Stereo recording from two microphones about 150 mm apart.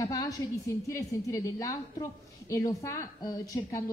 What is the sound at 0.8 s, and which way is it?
A woman's voice, 20° left (ahead or behind).